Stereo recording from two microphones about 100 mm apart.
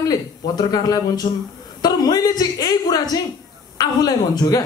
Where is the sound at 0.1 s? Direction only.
40° left (ahead or behind).